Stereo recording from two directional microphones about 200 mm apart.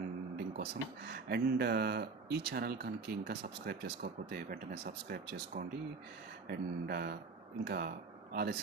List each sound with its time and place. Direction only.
0.5 s speech: 55° right (ahead or behind)